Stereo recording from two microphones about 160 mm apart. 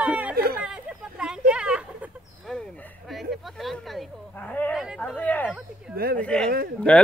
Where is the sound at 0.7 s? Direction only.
5° right (ahead or behind); by 4.7 s 10° left (ahead or behind).